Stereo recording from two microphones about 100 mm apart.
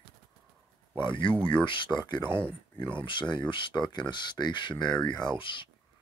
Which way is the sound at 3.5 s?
50° left (ahead or behind).